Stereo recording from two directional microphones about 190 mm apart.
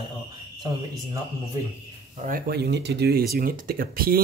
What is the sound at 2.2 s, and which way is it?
Speech, 50° right (ahead or behind).